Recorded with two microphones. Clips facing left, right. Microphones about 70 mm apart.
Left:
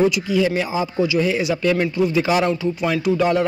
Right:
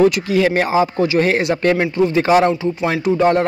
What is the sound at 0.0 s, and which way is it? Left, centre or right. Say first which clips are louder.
Speech: right 4 dB; right.